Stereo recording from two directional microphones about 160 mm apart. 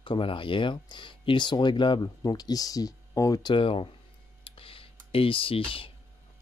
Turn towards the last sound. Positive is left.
turn(degrees=35)  # may be behind; listen again after turning